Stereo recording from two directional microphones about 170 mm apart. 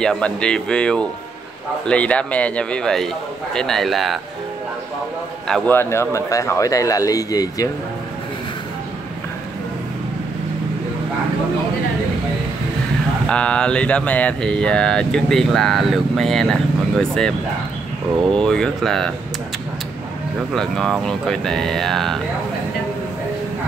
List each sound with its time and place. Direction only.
0.0 s speech: 5° left (ahead or behind)
5.5 s speech: 10° left (ahead or behind)
13.3 s speech: 5° left (ahead or behind)
18.3 s speech: 5° left (ahead or behind)
20.5 s speech: centre (ahead or behind)